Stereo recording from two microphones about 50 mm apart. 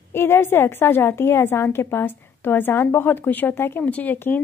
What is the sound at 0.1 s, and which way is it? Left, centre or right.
A woman's voice, left.